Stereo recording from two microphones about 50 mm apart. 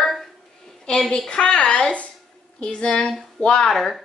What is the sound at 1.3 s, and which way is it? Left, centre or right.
A woman's voice, centre.